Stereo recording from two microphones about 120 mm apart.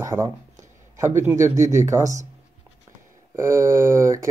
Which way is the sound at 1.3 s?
25° right (ahead or behind).